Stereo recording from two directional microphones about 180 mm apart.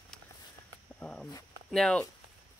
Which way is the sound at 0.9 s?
5° left (ahead or behind).